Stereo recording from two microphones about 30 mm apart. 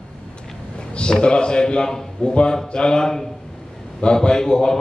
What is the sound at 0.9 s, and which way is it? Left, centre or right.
A man's voice, left.